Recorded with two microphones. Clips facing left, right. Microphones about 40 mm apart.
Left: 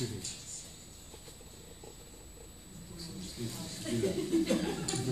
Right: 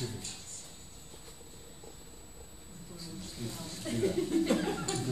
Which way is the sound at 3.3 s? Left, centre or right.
Centre.